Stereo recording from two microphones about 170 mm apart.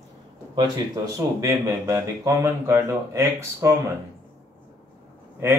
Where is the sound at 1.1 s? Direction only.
20° right (ahead or behind).